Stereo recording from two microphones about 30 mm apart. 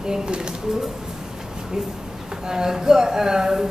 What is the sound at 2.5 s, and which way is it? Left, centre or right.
Speech, centre.